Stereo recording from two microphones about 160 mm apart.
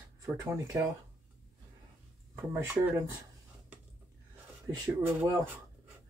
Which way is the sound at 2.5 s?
10° right (ahead or behind).